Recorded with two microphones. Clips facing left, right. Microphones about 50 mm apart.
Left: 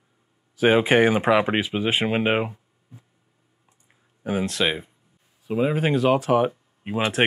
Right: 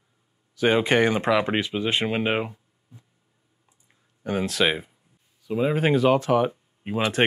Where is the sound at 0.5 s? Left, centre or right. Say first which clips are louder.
Left 3 dB; centre.